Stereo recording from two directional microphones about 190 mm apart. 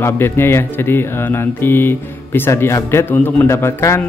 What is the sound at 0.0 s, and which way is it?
Speech, 15° left (ahead or behind).